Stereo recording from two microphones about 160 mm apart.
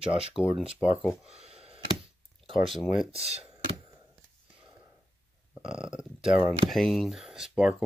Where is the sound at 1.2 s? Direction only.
40° right (ahead or behind).